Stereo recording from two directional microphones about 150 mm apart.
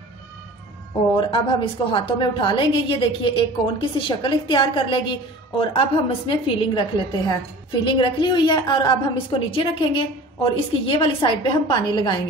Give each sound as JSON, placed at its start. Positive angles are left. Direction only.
{"t": 1.9, "sound": "a woman's voice", "side_deg": 35}